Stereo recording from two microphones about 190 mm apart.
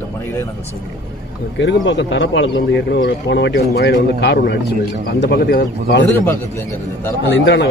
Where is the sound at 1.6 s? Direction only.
70° left (ahead or behind); by 5.9 s 55° left (ahead or behind).